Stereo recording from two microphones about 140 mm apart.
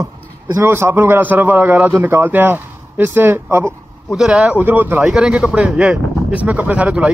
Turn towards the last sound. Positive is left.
turn(degrees=-10)  # may be behind; listen again after turning